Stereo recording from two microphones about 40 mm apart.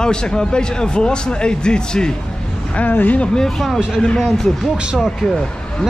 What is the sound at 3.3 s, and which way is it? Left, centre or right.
Speech, centre.